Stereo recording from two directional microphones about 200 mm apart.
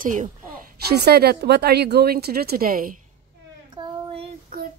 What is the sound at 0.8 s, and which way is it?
A woman's voice, 50° right (ahead or behind).